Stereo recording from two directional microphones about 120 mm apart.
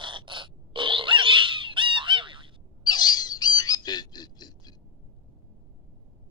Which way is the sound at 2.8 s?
35° left (ahead or behind).